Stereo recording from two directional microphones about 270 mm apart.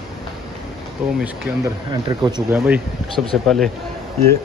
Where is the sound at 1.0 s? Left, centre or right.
Centre.